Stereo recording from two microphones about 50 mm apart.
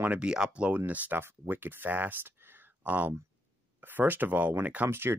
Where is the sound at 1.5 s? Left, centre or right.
Right.